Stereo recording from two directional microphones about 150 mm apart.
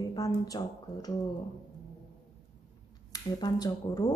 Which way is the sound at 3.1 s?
25° left (ahead or behind).